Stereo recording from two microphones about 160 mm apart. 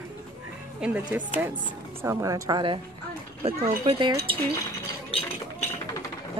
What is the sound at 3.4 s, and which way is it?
Speech, 40° right (ahead or behind).